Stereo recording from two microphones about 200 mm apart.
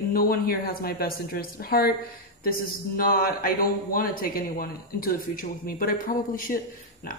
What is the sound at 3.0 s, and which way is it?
Speech, 45° left (ahead or behind).